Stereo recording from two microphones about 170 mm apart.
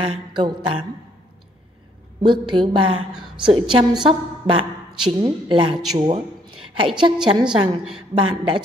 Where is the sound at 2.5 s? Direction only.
30° right (ahead or behind).